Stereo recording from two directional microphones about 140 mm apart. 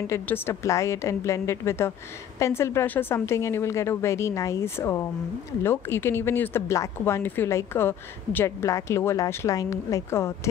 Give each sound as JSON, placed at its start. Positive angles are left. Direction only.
{"t": 0.0, "sound": "a woman's voice", "side_deg": 15}